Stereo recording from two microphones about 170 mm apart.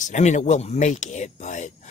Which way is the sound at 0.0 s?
45° left (ahead or behind).